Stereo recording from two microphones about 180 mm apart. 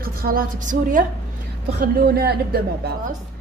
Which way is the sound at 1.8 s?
60° right (ahead or behind).